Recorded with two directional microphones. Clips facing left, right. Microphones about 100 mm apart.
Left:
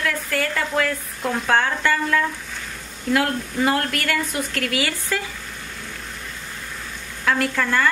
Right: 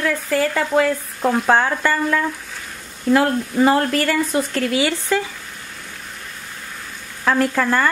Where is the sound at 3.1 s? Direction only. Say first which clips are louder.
Right 5 dB; 30° right (ahead or behind).